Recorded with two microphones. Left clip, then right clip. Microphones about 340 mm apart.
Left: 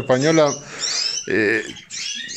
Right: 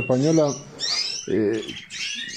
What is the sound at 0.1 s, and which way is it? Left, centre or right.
A man's voice, left.